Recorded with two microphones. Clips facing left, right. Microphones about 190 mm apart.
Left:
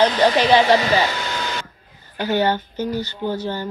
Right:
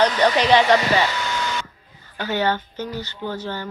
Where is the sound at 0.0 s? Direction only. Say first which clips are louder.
Left 2 dB; 30° left (ahead or behind).